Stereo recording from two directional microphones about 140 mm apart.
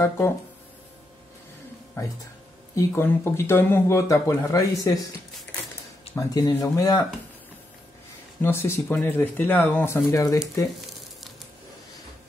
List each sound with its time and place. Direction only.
2.0 s speech: 20° left (ahead or behind)
6.1 s speech: 25° left (ahead or behind)
8.4 s speech: 20° left (ahead or behind)